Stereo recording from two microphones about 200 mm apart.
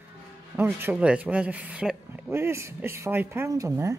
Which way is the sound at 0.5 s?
10° right (ahead or behind).